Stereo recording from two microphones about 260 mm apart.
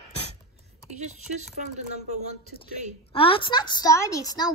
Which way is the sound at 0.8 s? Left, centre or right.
Right.